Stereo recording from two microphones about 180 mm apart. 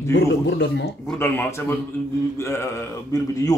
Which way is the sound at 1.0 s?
10° left (ahead or behind).